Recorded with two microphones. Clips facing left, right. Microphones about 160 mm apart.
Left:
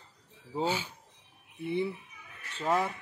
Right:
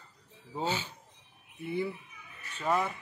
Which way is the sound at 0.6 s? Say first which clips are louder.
Left 2 dB; 10° left (ahead or behind).